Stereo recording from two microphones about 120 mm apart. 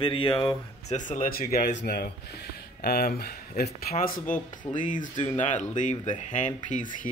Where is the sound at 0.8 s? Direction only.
90° left.